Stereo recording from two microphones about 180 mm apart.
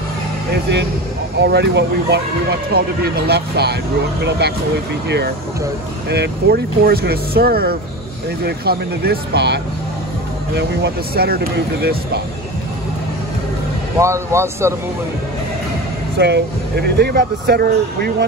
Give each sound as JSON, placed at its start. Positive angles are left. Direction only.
{"t": 0.5, "sound": "speech", "side_deg": -70}
{"t": 2.7, "sound": "speech", "side_deg": -60}
{"t": 13.9, "sound": "speech", "side_deg": -15}
{"t": 16.2, "sound": "speech", "side_deg": -65}